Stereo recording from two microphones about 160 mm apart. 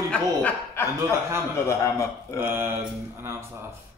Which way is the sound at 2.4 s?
15° right (ahead or behind).